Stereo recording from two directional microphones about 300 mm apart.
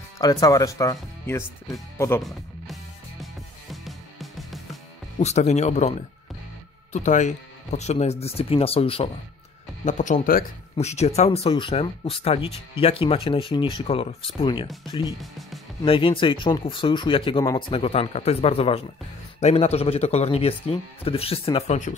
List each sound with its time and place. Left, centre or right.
0.2 s speech: centre
3.7 s music: centre
5.2 s speech: left
15.8 s speech: centre